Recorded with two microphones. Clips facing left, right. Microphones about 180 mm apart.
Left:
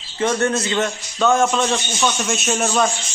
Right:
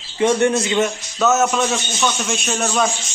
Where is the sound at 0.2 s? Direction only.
15° right (ahead or behind); by 2.8 s 5° left (ahead or behind).